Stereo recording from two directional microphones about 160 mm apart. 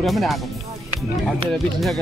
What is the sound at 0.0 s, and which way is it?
Speech, centre (ahead or behind).